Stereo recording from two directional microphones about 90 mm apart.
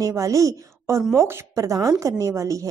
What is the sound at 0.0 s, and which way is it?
A woman's voice, 35° right (ahead or behind).